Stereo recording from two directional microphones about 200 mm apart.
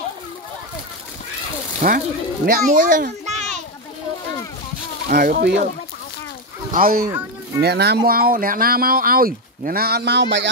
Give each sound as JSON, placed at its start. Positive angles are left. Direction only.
{"t": 1.8, "sound": "a child's voice", "side_deg": -50}
{"t": 5.1, "sound": "speech", "side_deg": -50}
{"t": 6.7, "sound": "speech", "side_deg": -45}
{"t": 7.1, "sound": "speech", "side_deg": -15}
{"t": 7.6, "sound": "speech", "side_deg": -55}